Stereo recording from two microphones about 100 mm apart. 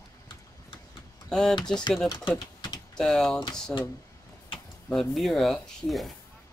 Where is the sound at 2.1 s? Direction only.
55° left (ahead or behind).